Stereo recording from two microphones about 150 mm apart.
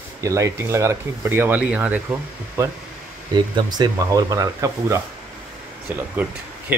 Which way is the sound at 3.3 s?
30° right (ahead or behind).